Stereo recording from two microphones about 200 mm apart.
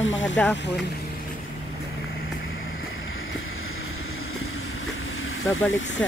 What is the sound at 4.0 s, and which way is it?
Vehicle, 90° left.